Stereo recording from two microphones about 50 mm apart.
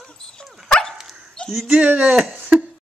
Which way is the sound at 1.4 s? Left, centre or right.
Centre.